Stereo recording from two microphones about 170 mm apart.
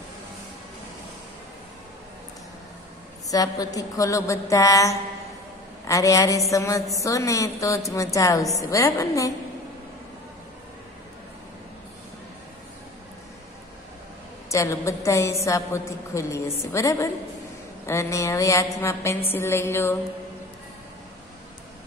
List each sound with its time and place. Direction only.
3.3 s a woman's voice: 20° left (ahead or behind)
14.5 s a woman's voice: 20° left (ahead or behind)